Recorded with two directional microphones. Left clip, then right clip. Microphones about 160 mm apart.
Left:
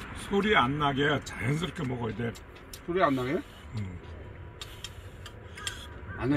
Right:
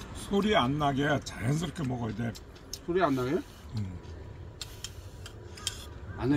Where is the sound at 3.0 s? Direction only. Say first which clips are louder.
Left 2 dB; 5° left (ahead or behind).